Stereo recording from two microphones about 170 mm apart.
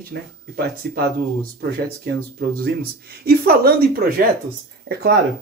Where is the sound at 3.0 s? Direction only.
65° right (ahead or behind).